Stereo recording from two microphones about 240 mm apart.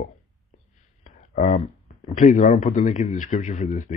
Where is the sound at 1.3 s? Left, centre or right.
Left.